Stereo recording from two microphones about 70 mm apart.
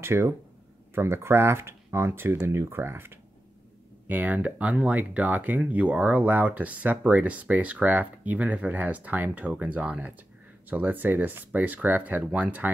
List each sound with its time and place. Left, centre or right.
0.0 s speech: right
4.1 s speech: right